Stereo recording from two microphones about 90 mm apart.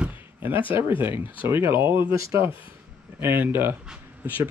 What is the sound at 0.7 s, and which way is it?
Speech, 25° right (ahead or behind).